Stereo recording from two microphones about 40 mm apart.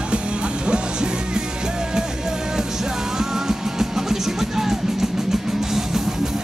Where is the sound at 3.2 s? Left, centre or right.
Centre.